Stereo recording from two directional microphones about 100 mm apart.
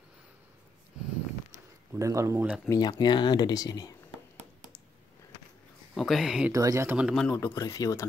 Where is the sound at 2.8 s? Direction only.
45° left (ahead or behind).